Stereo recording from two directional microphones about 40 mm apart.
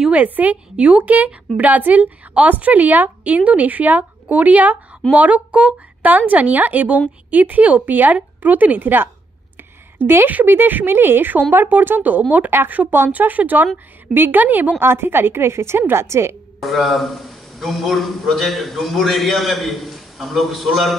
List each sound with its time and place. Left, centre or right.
0.1 s a woman's voice: right
0.7 s a woman's voice: right
1.0 s a woman's voice: right
6.0 s a woman's voice: right
9.9 s a woman's voice: right
10.4 s speech: right
10.9 s a woman's voice: right
14.8 s a woman's voice: right
16.6 s a man's voice: centre